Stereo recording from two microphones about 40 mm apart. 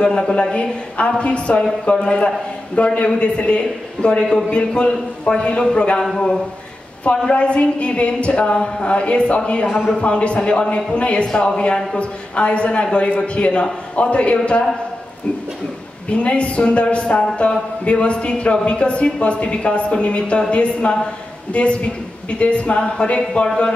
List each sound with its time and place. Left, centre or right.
0.0 s a woman's voice: left
7.1 s speech: left
16.1 s a woman's voice: left